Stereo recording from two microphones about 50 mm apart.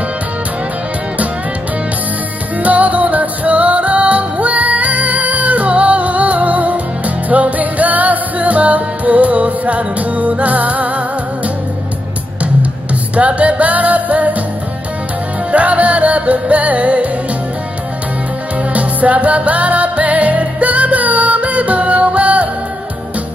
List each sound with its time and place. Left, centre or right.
2.6 s music: right
13.1 s music: right
15.5 s music: right
18.7 s music: right